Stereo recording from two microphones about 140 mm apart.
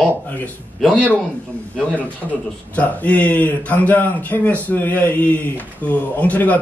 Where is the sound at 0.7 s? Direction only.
5° left (ahead or behind).